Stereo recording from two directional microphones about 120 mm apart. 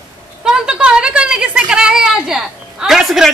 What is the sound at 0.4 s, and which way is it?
A woman's voice, 5° right (ahead or behind).